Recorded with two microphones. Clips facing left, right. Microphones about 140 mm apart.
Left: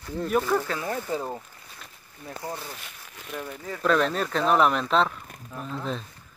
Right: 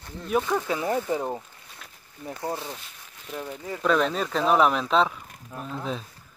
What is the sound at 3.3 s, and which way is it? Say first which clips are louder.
Speech: right 1 dB; 15° right (ahead or behind).